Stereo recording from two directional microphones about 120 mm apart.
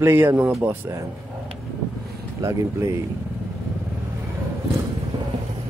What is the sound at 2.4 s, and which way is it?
Speech, 25° right (ahead or behind).